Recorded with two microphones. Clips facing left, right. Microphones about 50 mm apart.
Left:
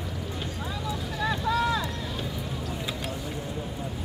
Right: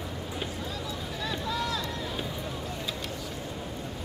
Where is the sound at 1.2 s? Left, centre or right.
Left.